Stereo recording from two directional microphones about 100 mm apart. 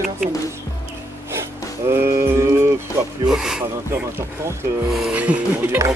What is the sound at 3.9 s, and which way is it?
Speech, 25° right (ahead or behind).